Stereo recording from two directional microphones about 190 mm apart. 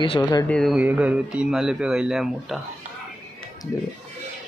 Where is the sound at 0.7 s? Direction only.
5° right (ahead or behind).